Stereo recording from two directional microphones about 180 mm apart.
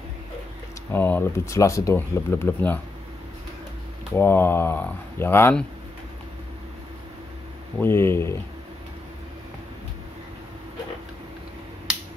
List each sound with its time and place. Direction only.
0.9 s speech: 10° left (ahead or behind)
4.1 s speech: 10° left (ahead or behind)
7.8 s speech: 15° left (ahead or behind)